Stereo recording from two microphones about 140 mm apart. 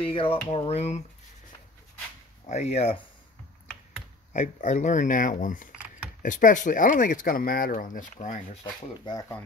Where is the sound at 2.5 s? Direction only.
55° left (ahead or behind).